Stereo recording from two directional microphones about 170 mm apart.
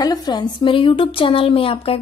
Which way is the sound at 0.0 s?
25° left (ahead or behind).